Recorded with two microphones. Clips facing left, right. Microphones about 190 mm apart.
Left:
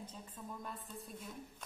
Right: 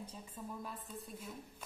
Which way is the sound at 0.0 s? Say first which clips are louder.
Right 2 dB; 10° right (ahead or behind).